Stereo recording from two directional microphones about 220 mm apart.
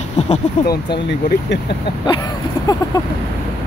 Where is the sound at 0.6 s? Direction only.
45° left (ahead or behind).